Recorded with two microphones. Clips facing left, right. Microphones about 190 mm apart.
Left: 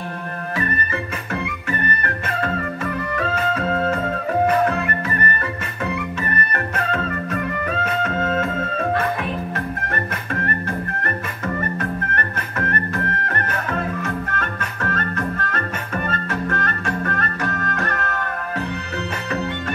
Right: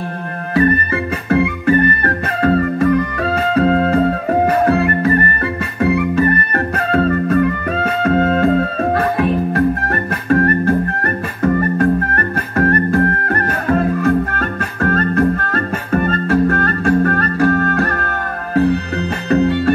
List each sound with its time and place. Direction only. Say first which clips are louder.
1.3 s music: right 14 dB; 35° right (ahead or behind)